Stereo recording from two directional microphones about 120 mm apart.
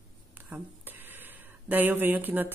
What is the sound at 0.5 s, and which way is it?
Speech, 15° right (ahead or behind).